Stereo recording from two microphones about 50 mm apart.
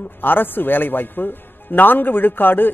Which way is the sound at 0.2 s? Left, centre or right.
Left.